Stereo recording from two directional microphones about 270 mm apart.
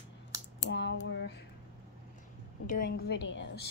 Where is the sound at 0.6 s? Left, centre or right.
Left.